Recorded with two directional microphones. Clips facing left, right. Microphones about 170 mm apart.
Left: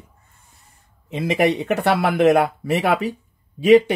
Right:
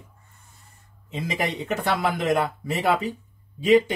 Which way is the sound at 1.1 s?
65° left (ahead or behind).